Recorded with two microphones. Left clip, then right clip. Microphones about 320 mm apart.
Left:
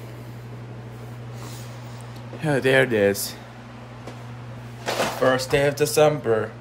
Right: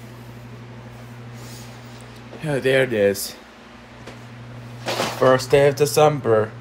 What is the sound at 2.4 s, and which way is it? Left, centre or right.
Speech, centre.